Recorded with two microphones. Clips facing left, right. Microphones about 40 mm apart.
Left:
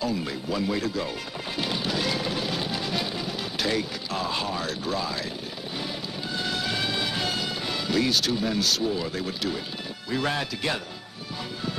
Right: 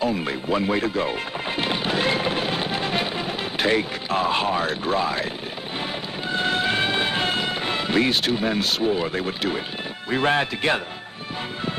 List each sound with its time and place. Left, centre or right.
0.0 s speech: right
1.6 s music: right
6.3 s music: right
10.0 s speech: right